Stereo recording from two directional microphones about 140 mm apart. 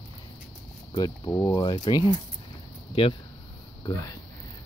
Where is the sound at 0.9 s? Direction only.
25° left (ahead or behind).